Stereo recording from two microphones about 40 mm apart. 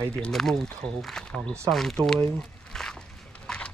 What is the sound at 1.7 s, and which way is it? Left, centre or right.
Speech, centre.